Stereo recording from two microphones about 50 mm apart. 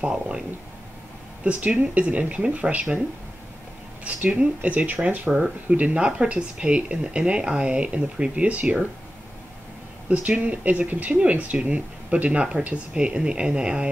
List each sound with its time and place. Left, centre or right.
0.0 s speech: centre
1.4 s speech: right
4.0 s speech: right
10.0 s speech: right